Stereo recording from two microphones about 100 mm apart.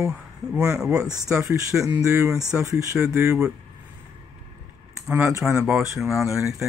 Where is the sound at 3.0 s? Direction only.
10° right (ahead or behind).